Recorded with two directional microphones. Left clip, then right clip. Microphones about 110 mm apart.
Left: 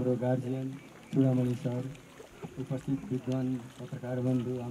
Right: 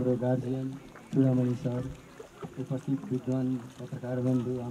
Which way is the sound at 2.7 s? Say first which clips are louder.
Right 1 dB; 15° left (ahead or behind).